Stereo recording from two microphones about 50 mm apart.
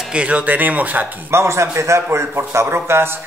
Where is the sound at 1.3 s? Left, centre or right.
Right.